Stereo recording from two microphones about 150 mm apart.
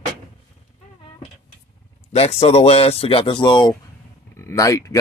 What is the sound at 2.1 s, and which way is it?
Speech, 45° left (ahead or behind).